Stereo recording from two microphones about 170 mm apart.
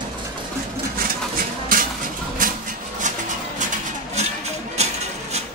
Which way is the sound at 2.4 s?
55° right (ahead or behind).